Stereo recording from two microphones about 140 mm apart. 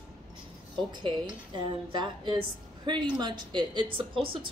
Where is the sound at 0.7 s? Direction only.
35° right (ahead or behind).